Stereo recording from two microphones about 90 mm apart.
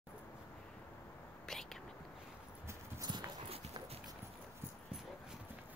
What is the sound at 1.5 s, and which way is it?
Whispering, 5° left (ahead or behind).